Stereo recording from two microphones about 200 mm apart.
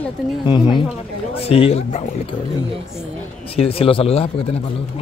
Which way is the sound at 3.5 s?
30° left (ahead or behind).